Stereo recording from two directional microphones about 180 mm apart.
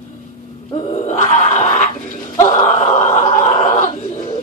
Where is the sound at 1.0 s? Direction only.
40° left (ahead or behind).